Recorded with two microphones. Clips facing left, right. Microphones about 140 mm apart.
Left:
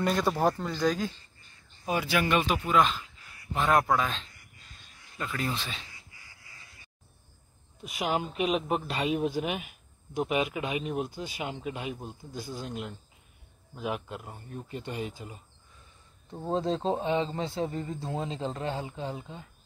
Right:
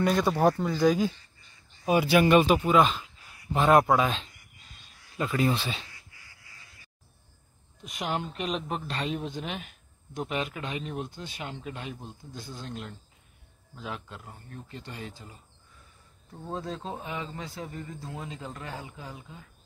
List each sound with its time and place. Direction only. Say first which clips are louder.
0.0 s speech: right 3 dB; centre (ahead or behind)
5.2 s speech: right 7 dB; 20° right (ahead or behind)
7.8 s speech: left 2 dB; 5° left (ahead or behind)
16.4 s speech: left 7 dB; 25° left (ahead or behind)